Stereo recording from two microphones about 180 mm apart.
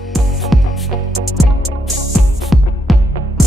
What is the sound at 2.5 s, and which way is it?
Music, centre (ahead or behind).